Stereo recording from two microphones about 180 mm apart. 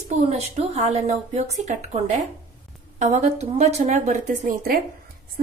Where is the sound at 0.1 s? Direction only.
35° right (ahead or behind).